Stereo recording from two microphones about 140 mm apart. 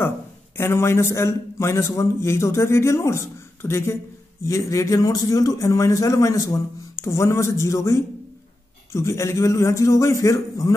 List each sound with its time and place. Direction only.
0.6 s a man's voice: 15° left (ahead or behind)